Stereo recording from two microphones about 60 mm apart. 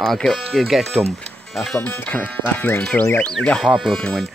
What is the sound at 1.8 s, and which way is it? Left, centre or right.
Speech, left.